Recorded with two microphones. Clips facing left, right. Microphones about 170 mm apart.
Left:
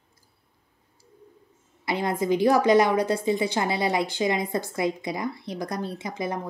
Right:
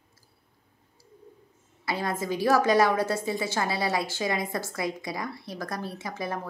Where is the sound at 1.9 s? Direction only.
20° left (ahead or behind).